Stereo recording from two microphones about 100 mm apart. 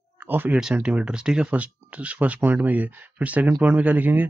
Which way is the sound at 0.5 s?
10° right (ahead or behind).